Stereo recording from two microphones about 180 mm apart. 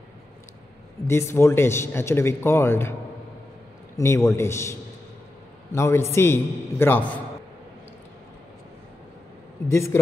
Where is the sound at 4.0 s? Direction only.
15° left (ahead or behind).